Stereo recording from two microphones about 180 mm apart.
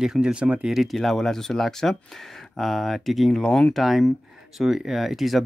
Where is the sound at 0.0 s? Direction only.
5° right (ahead or behind).